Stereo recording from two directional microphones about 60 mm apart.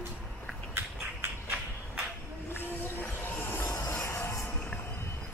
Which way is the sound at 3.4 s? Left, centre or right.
Left.